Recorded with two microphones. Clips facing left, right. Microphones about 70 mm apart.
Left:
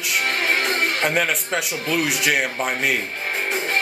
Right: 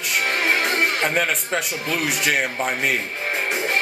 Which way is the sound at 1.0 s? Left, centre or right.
Centre.